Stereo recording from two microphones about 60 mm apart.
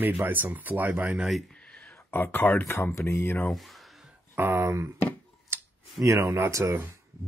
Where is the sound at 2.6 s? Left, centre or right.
Left.